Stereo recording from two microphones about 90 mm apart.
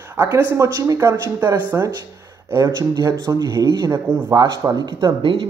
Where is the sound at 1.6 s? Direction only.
20° right (ahead or behind).